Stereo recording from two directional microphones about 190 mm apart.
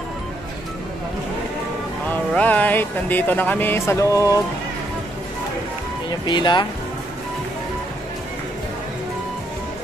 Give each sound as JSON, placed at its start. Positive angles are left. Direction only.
{"t": 2.0, "sound": "speech", "side_deg": 10}
{"t": 6.0, "sound": "speech", "side_deg": 25}